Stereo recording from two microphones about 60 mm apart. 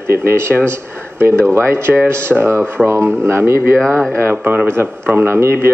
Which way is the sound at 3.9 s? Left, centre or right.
Centre.